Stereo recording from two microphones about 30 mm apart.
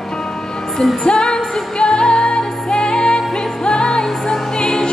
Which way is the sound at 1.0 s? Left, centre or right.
Left.